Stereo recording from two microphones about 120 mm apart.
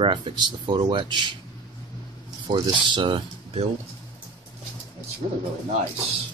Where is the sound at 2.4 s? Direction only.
40° right (ahead or behind).